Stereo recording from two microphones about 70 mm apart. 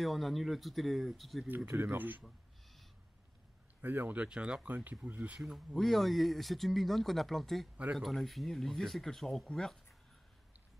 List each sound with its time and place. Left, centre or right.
0.0 s speech: centre
1.7 s speech: right
2.2 s a sound: centre
3.8 s speech: right
4.2 s speech: centre
5.4 s speech: centre
5.8 s speech: centre